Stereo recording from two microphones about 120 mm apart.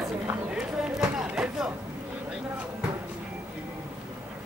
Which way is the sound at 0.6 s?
5° right (ahead or behind).